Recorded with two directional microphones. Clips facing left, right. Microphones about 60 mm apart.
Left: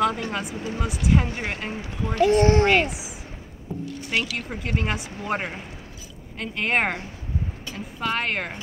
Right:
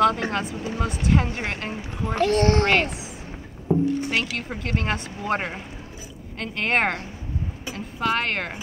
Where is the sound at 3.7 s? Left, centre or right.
Right.